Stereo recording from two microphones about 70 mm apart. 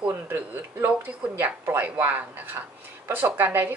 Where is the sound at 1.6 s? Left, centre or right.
Right.